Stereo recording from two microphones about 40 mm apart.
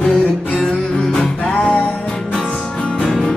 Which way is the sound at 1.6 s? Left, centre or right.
Left.